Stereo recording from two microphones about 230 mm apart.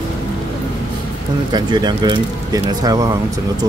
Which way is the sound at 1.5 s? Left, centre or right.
Centre.